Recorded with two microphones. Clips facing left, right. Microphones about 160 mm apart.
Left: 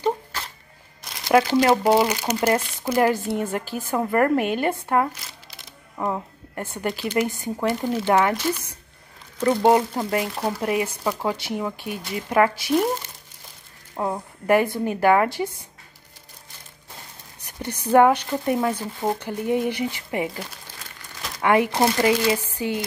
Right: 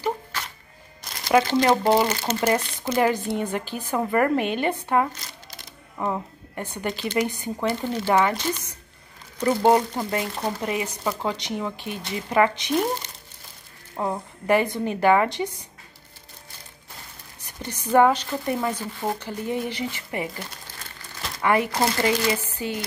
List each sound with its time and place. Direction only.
1.1 s speech: 5° left (ahead or behind)
2.5 s speech: 5° left (ahead or behind)
4.8 s a sound: 5° left (ahead or behind)
6.7 s speech: 5° left (ahead or behind)
17.5 s speech: 10° left (ahead or behind)